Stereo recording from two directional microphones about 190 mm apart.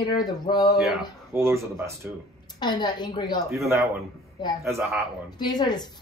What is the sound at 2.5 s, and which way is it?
A woman's voice, 20° left (ahead or behind).